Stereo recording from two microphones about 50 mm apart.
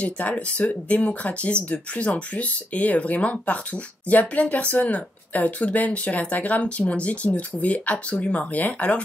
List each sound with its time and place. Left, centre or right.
0.0 s speech: left